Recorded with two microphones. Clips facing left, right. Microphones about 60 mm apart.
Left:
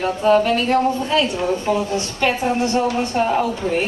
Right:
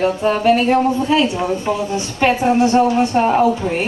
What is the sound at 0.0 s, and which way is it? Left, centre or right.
A woman's voice, centre.